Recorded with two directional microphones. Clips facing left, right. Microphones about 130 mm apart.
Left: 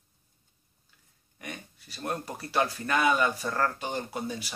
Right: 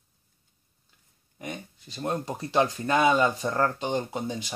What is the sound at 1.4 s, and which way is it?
Speech, 25° right (ahead or behind).